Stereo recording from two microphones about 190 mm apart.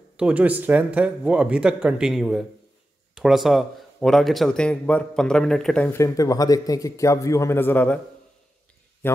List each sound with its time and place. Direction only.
0.2 s a man's voice: 5° right (ahead or behind)
5.9 s a man's voice: 15° left (ahead or behind)
9.0 s a man's voice: 10° left (ahead or behind)